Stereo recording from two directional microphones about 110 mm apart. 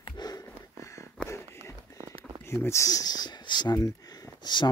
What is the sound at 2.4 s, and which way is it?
Speech, 25° left (ahead or behind).